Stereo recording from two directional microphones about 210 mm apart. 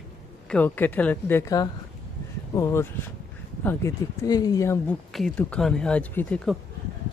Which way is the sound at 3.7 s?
15° left (ahead or behind).